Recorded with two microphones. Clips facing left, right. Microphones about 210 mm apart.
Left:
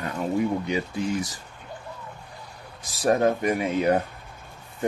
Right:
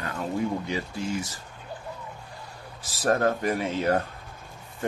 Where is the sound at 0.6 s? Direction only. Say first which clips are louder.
Left 4 dB; 15° left (ahead or behind).